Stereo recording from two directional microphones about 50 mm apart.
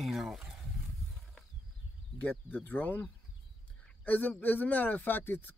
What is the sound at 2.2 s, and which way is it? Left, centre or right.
Speech, left.